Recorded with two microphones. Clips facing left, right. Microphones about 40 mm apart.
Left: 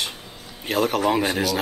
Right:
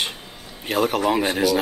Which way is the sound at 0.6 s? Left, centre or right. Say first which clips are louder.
Right 1 dB; centre.